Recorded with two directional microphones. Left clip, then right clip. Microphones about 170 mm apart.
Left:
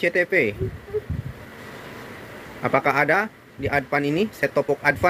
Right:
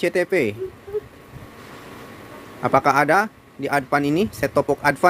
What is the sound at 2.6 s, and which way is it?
Speech, 20° right (ahead or behind).